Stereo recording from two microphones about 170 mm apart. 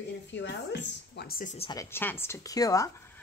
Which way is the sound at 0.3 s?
90° left.